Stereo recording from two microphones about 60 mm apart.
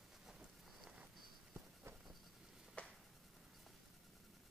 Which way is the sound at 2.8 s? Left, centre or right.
Left.